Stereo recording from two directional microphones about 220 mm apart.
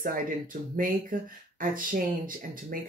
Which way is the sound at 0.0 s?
40° right (ahead or behind).